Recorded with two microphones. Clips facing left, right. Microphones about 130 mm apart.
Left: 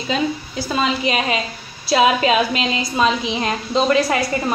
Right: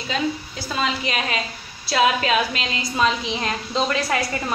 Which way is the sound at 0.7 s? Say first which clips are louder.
Left 5 dB; 15° left (ahead or behind).